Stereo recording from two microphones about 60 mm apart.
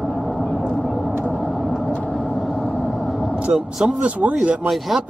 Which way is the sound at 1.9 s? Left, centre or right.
Left.